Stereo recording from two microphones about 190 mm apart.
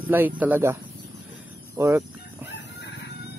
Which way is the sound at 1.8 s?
15° right (ahead or behind).